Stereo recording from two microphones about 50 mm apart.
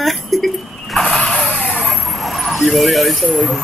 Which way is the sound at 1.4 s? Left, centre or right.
Centre.